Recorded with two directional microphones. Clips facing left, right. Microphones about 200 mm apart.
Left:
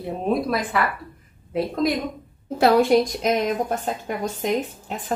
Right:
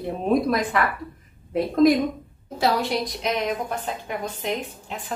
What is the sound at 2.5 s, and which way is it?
A woman's voice, 55° left (ahead or behind).